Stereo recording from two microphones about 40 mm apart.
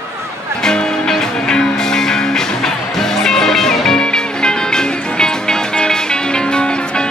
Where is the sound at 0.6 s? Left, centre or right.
Centre.